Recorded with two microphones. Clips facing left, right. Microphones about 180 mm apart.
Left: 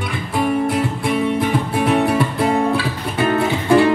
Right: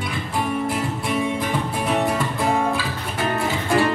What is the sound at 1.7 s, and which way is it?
Music, 65° left (ahead or behind).